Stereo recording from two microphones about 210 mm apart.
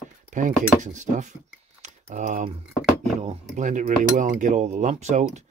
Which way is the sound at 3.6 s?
35° right (ahead or behind).